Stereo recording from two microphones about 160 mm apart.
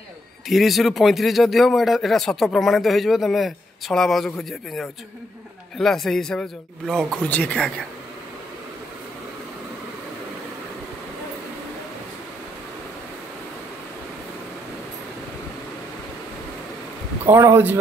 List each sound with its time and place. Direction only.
0.5 s a man's voice: centre (ahead or behind)
17.3 s speech: 15° right (ahead or behind)